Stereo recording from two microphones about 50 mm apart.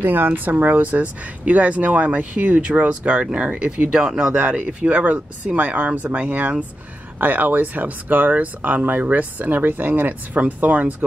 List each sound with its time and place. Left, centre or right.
0.0 s speech: right
2.5 s speech: right
4.4 s speech: right